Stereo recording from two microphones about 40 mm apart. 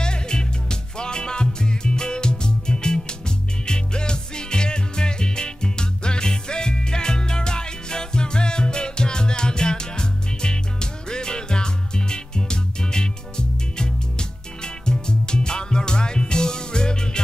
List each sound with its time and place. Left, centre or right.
0.0 s music: left